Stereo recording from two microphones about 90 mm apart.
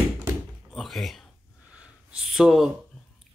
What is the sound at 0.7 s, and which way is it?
Speech, centre (ahead or behind).